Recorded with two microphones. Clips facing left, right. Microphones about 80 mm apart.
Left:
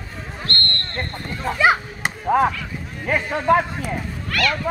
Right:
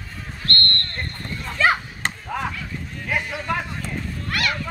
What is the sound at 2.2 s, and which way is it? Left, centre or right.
Chop, left.